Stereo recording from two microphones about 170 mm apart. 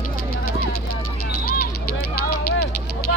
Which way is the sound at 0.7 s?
60° left (ahead or behind).